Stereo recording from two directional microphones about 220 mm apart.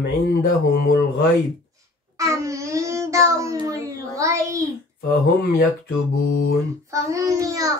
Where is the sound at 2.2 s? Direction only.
15° right (ahead or behind).